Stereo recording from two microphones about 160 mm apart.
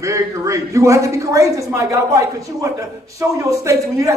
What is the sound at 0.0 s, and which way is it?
A man's voice, 20° right (ahead or behind).